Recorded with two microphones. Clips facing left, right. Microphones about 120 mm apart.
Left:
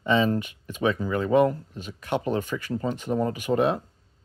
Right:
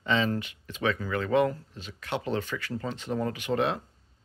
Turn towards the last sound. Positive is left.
turn(degrees=10)  # may be behind; listen again after turning